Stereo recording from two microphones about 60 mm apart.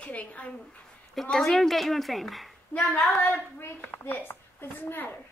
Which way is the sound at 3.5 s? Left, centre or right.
Left.